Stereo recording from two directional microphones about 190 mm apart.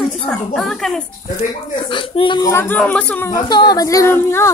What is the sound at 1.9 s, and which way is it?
Speech, 25° left (ahead or behind).